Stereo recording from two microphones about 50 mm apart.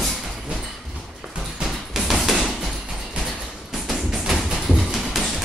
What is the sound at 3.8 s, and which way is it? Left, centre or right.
Music, centre.